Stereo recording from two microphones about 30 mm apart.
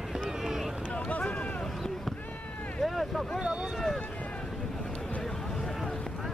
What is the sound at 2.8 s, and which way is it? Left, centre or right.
Boat, centre.